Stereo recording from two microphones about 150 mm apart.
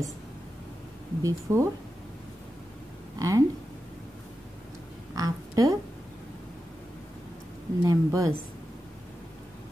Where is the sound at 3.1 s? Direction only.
20° right (ahead or behind).